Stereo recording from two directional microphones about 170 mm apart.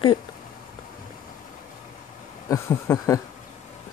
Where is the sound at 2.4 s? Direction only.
15° left (ahead or behind).